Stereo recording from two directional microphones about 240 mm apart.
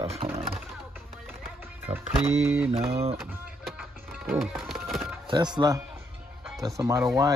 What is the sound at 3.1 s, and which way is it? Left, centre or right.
Music, centre.